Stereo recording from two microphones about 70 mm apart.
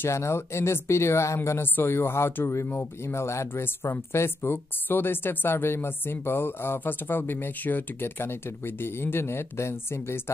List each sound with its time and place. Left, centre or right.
0.0 s speech: left